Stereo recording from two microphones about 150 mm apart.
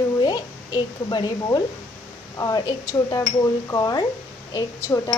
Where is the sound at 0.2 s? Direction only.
30° left (ahead or behind).